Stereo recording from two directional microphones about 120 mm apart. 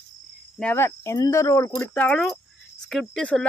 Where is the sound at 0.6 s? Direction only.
20° left (ahead or behind).